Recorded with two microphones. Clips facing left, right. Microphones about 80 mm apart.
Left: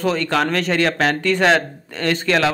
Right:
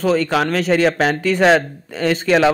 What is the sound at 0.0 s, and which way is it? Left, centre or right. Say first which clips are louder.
Speech: right 2 dB; centre.